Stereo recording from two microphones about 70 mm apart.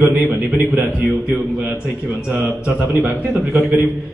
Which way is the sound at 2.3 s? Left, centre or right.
Right.